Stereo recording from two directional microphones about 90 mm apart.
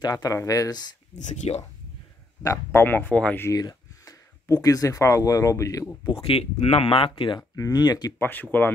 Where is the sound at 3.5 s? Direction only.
45° left (ahead or behind).